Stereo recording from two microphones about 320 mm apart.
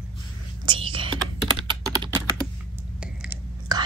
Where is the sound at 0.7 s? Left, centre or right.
Centre.